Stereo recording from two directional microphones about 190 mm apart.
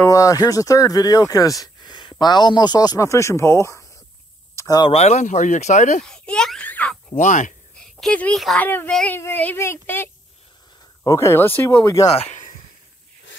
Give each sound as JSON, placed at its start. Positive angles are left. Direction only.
{"t": 0.0, "sound": "speech", "side_deg": 20}
{"t": 4.9, "sound": "speech", "side_deg": 35}
{"t": 6.0, "sound": "a sound", "side_deg": 5}
{"t": 7.1, "sound": "speech", "side_deg": 40}
{"t": 7.7, "sound": "a child's voice", "side_deg": 5}
{"t": 12.1, "sound": "a sound", "side_deg": 35}